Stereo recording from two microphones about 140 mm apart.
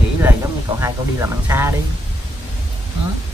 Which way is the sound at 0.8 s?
20° right (ahead or behind).